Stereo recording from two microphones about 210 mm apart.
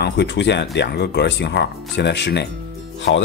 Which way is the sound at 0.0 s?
55° left (ahead or behind).